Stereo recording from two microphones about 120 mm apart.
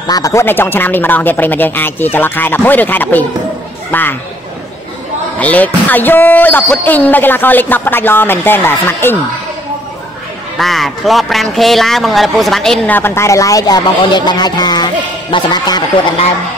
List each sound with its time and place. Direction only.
0.0 s speech: 30° left (ahead or behind)
5.4 s speech: 15° left (ahead or behind)
10.6 s a man's voice: centre (ahead or behind)
12.9 s speech: 20° left (ahead or behind); by 15.8 s 35° left (ahead or behind)